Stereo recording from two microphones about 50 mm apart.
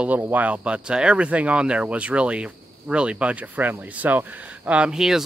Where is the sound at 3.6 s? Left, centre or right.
Right.